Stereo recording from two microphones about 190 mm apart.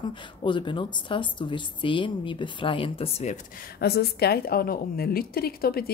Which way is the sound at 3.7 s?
55° left (ahead or behind).